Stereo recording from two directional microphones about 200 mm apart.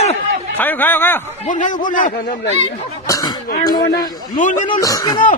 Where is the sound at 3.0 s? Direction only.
20° left (ahead or behind).